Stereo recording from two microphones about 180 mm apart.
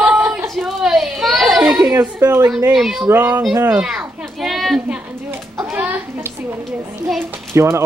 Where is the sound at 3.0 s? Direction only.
15° right (ahead or behind).